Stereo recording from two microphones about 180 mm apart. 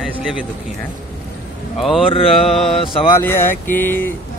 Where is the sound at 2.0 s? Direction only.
30° left (ahead or behind).